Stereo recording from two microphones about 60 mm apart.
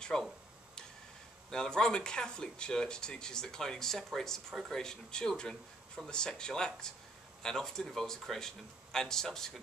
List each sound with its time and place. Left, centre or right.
0.0 s speech: centre
1.5 s speech: centre